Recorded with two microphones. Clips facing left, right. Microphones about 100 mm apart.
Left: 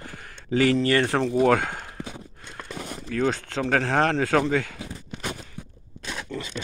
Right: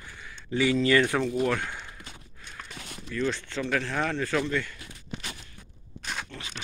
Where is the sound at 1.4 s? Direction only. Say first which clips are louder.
Left 8 dB; 90° left.